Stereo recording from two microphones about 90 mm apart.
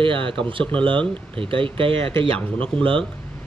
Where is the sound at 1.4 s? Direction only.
75° right (ahead or behind).